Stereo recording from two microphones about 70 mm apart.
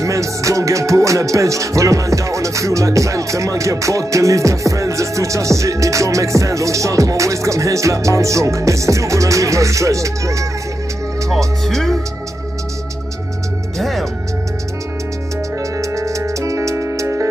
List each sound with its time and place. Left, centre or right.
0.0 s music: right
11.2 s speech: centre
13.7 s speech: centre
15.6 s music: right